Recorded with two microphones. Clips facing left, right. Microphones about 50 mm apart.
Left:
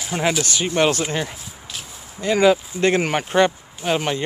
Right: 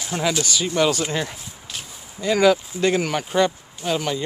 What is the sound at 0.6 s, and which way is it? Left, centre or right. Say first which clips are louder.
Speech: left 1 dB; left.